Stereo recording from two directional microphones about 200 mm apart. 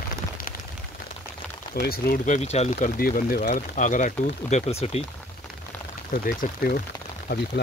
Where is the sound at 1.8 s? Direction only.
50° left (ahead or behind); by 5.0 s 30° left (ahead or behind).